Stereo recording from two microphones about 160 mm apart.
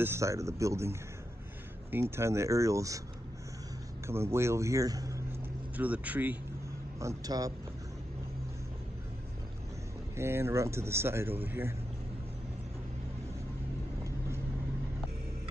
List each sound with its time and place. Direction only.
0.0 s speech: 15° right (ahead or behind)
4.1 s speech: 15° right (ahead or behind)
5.8 s speech: 10° right (ahead or behind)
7.0 s speech: 20° right (ahead or behind)
10.1 s speech: 15° right (ahead or behind)